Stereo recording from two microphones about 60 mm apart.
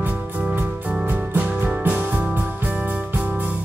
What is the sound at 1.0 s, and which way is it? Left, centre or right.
Music, right.